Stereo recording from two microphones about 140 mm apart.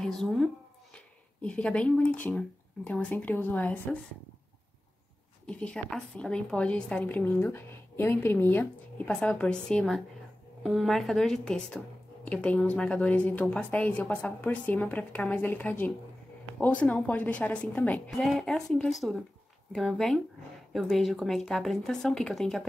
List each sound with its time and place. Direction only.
0.0 s speech: 5° left (ahead or behind)
5.5 s a woman's voice: 10° left (ahead or behind)